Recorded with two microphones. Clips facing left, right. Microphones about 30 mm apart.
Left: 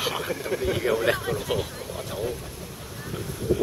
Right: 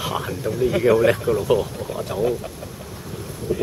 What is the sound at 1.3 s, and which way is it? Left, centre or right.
Speech, left.